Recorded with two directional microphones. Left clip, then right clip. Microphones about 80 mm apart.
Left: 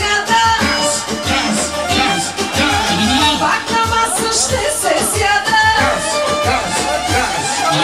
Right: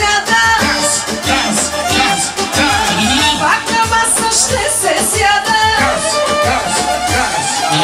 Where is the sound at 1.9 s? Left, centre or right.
Right.